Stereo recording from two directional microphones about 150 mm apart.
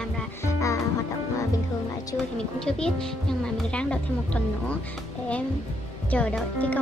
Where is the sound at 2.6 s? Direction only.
5° left (ahead or behind).